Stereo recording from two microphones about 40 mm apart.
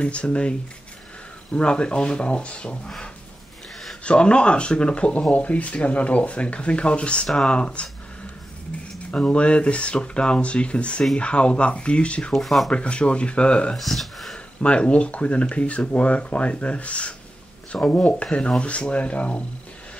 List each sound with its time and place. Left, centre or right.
0.0 s speech: left
4.0 s speech: left
9.1 s speech: left
12.4 s speech: centre
12.7 s speech: left
13.7 s speech: centre
14.6 s speech: left